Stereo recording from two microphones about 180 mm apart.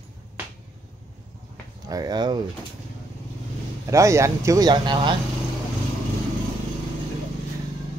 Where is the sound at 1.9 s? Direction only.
20° right (ahead or behind).